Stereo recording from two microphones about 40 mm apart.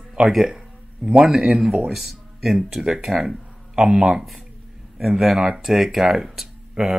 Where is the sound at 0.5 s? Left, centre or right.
Right.